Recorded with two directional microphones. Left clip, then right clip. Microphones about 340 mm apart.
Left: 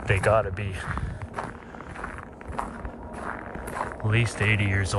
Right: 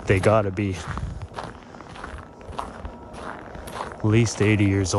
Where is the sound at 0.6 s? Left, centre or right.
Centre.